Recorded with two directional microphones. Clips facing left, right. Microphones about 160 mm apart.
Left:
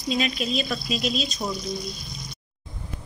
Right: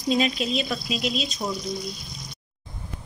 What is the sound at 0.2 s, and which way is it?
Speech, 25° right (ahead or behind).